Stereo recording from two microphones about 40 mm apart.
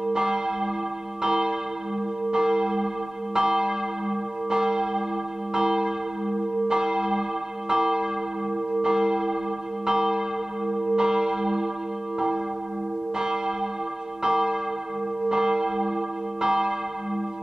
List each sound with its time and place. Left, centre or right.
0.1 s church bell: centre
14.2 s church bell: centre